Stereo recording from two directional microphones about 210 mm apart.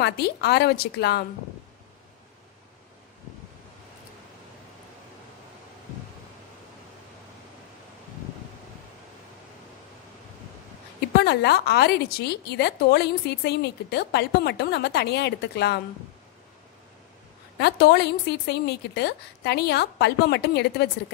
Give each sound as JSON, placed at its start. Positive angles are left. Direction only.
{"t": 0.0, "sound": "a woman's voice", "side_deg": 50}
{"t": 11.1, "sound": "a woman's voice", "side_deg": 50}
{"t": 17.6, "sound": "a woman's voice", "side_deg": 50}